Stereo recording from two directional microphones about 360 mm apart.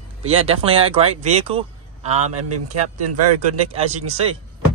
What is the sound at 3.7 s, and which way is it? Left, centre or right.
Speech, centre.